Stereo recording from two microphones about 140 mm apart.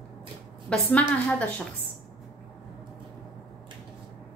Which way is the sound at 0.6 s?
10° left (ahead or behind).